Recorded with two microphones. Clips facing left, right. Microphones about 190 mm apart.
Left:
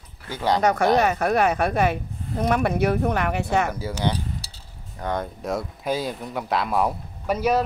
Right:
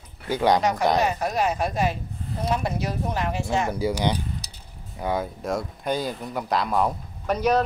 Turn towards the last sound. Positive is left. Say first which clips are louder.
# even
turn(degrees=5)  # may be behind; listen again after turning